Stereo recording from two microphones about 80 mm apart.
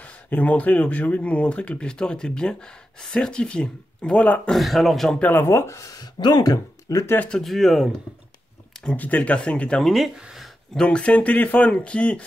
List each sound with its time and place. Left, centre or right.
0.0 s speech: centre
4.5 s a man's voice: centre
5.2 s speech: left
6.1 s speech: left
7.2 s a man's voice: centre
8.8 s speech: centre
9.8 s speech: centre